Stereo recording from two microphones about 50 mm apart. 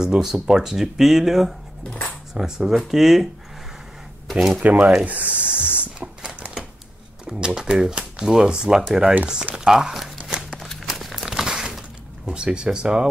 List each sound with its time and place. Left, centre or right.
0.0 s speech: centre
4.3 s speech: centre
4.6 s spray: right
7.2 s speech: centre
10.5 s a sound: centre
12.3 s speech: centre